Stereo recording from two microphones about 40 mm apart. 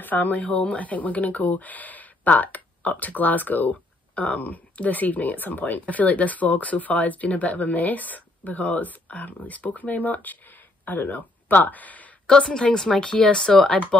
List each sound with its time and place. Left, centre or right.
0.0 s speech: left
12.3 s speech: centre